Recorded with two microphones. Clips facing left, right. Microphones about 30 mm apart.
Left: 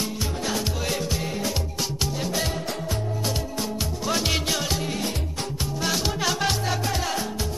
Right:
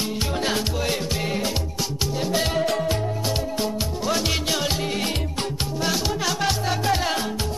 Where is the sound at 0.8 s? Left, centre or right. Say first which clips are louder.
Right 2 dB; right.